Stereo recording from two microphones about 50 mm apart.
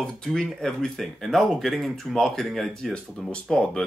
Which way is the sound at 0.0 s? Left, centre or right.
Centre.